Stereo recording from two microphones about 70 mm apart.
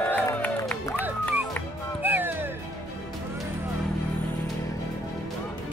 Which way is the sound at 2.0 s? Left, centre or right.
Right.